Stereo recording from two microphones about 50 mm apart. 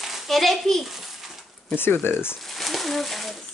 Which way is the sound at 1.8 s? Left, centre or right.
Left.